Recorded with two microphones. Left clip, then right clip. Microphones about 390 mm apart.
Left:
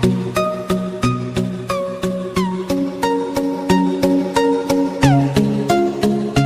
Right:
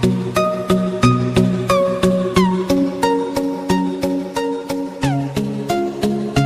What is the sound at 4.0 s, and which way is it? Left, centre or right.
Music, left.